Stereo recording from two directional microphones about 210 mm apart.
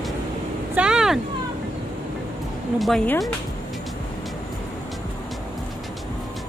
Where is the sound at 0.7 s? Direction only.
5° right (ahead or behind).